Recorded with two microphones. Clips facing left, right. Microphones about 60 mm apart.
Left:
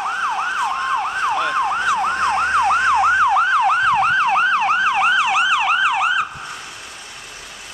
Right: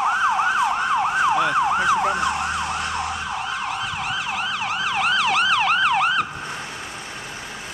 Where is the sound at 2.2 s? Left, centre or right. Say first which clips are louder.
Left 6 dB; left.